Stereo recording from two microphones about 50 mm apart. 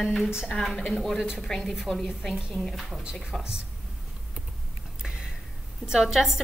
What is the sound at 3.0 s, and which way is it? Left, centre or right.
Speech, centre.